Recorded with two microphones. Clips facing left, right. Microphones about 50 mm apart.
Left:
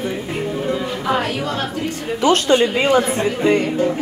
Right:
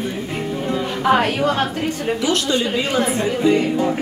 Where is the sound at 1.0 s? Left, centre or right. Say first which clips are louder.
Right 5 dB; right.